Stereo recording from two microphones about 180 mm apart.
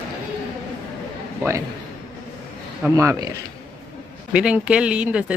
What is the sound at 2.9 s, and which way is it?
Speech, 15° right (ahead or behind).